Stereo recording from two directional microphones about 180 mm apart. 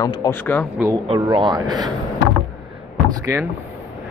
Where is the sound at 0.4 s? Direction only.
10° left (ahead or behind).